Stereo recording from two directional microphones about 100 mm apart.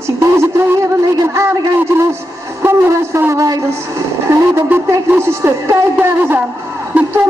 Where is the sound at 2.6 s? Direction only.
25° right (ahead or behind).